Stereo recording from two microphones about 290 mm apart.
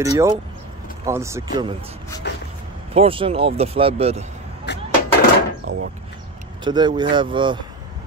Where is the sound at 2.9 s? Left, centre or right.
Centre.